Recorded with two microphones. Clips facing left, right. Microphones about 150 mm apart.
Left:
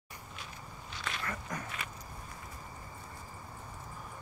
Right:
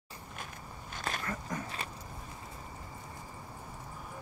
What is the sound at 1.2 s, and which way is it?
Dog, 30° right (ahead or behind).